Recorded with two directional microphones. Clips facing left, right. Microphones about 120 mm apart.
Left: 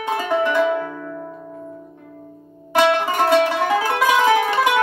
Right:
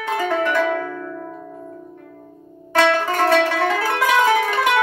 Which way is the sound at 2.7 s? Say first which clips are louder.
Left 1 dB; 15° left (ahead or behind).